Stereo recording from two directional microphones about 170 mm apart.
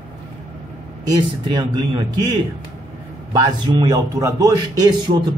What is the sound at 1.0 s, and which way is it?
A man's voice, 20° right (ahead or behind).